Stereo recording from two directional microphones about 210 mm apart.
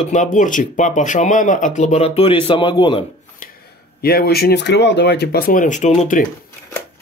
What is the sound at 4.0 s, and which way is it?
Speech, 50° left (ahead or behind).